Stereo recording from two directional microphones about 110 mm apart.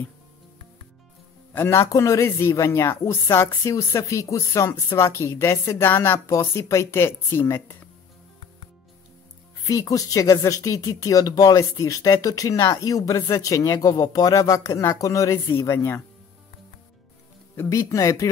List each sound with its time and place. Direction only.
1.5 s a man's voice: 20° left (ahead or behind)
9.7 s speech: 30° left (ahead or behind)
17.6 s a man's voice: 30° left (ahead or behind)